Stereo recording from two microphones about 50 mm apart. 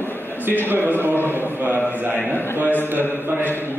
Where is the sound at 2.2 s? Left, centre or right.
Left.